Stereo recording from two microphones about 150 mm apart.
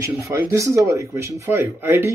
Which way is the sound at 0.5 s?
20° right (ahead or behind).